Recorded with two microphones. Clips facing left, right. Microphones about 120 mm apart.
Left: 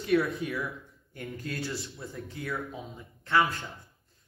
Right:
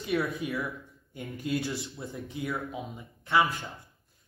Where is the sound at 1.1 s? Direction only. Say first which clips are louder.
Right 5 dB; 20° right (ahead or behind).